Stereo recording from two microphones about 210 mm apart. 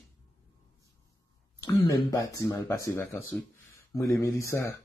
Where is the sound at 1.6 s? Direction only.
15° left (ahead or behind).